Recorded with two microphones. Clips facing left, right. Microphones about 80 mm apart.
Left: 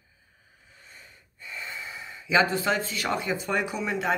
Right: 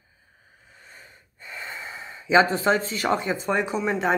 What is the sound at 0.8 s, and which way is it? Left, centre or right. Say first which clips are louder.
Gasp: right 3 dB; right.